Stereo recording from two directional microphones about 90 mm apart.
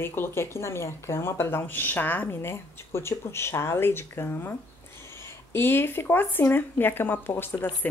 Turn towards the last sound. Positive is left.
turn(degrees=25)  # may be behind; listen again after turning